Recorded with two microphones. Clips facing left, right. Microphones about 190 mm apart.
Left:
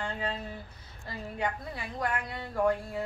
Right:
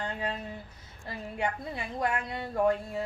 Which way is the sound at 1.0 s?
25° right (ahead or behind).